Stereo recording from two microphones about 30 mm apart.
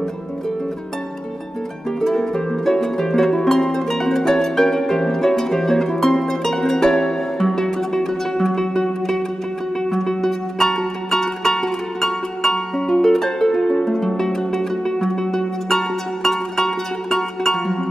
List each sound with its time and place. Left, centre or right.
2.0 s harp: centre
9.8 s music: centre